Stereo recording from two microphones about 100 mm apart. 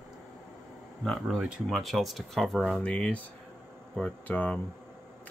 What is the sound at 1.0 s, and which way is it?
Speech, centre (ahead or behind).